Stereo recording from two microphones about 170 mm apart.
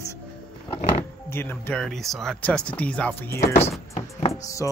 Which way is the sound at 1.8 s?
Centre (ahead or behind).